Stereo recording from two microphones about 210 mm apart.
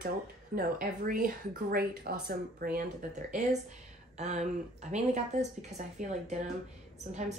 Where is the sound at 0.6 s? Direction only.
40° right (ahead or behind).